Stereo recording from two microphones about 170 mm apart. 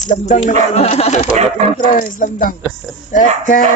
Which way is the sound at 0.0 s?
45° left (ahead or behind).